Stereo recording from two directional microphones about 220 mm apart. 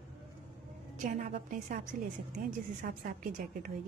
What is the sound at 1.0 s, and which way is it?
Speech, 35° right (ahead or behind).